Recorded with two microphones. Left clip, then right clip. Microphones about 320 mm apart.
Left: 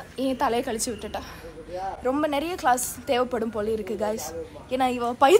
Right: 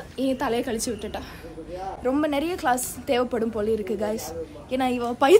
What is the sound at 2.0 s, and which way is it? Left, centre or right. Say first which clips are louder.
A woman's voice: right 1 dB; centre.